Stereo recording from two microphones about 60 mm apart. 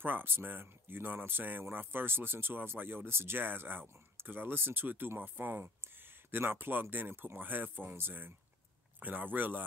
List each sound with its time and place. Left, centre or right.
0.0 s speech: right